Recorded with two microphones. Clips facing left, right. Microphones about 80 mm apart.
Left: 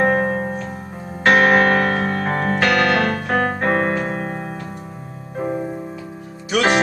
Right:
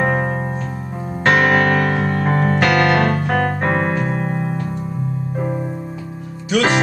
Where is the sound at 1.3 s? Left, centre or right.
Centre.